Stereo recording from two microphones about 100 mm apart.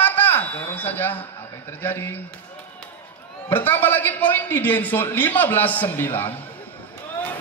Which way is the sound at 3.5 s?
20° left (ahead or behind).